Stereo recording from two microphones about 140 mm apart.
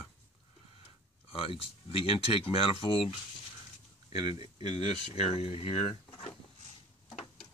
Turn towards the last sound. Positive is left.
turn(degrees=45)  # may be behind; listen again after turning